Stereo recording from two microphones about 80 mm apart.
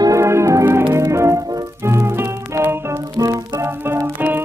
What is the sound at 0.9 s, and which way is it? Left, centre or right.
Music, right.